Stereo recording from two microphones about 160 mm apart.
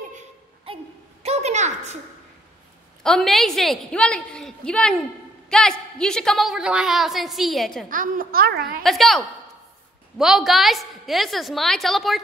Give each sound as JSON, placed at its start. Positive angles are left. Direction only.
{"t": 0.7, "sound": "a sound", "side_deg": -35}
{"t": 3.0, "sound": "a woman's voice", "side_deg": 0}
{"t": 7.9, "sound": "a woman's voice", "side_deg": -60}
{"t": 8.8, "sound": "a woman's voice", "side_deg": 0}